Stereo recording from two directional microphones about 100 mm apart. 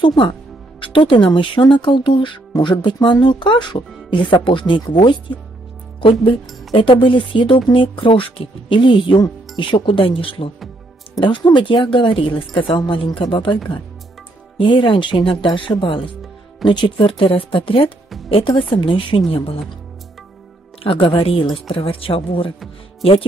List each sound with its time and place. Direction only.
0.0 s speech: 50° left (ahead or behind)
6.7 s speech: 55° left (ahead or behind)
14.6 s speech: 55° left (ahead or behind)
20.8 s speech: 65° left (ahead or behind)